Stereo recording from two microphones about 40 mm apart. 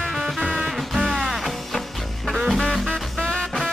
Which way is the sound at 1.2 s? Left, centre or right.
Centre.